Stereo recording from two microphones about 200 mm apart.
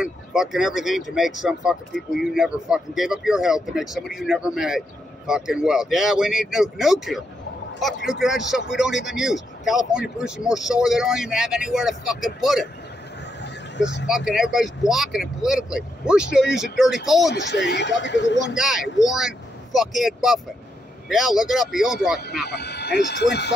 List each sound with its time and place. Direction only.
0.0 s speech: 5° right (ahead or behind)
13.4 s a sound: 65° left (ahead or behind)
14.0 s speech: 5° right (ahead or behind)
17.3 s speech: 60° left (ahead or behind)
18.6 s speech: centre (ahead or behind)
22.5 s speech: 55° left (ahead or behind)